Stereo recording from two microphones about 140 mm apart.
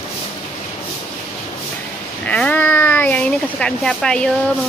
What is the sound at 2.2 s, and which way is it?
Speech, 10° left (ahead or behind).